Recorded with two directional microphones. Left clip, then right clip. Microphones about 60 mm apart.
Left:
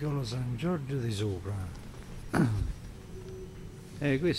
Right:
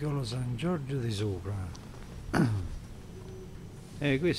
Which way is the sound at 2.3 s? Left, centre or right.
Centre.